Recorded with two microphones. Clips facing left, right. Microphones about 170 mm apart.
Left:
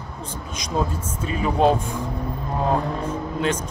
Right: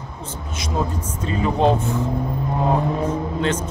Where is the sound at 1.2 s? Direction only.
15° left (ahead or behind).